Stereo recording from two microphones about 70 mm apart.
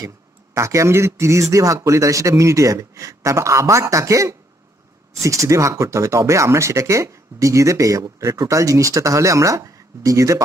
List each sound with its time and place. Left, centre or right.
0.6 s speech: right